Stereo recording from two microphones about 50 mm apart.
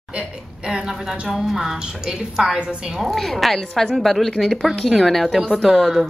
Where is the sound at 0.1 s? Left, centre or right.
Right.